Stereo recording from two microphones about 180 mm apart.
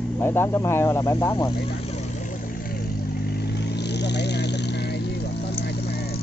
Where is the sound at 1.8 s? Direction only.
40° left (ahead or behind).